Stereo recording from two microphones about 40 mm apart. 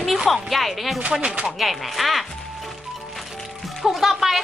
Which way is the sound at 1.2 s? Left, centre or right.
Right.